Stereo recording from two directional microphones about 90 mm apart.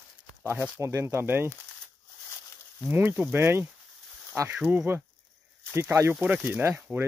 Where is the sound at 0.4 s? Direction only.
30° right (ahead or behind).